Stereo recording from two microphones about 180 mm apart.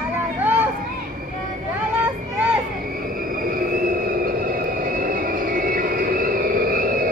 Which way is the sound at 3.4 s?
50° right (ahead or behind).